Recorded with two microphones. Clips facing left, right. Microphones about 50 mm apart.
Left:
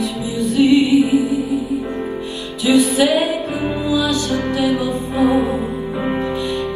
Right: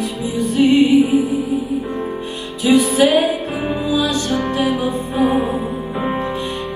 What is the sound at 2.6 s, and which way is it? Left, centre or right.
Music, right.